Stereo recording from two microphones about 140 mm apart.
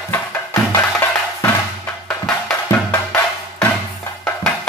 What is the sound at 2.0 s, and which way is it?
Music, 5° left (ahead or behind).